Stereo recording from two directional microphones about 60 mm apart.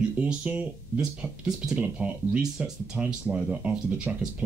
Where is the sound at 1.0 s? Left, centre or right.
Centre.